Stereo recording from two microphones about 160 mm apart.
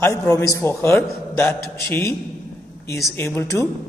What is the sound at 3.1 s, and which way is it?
Speech, 15° left (ahead or behind).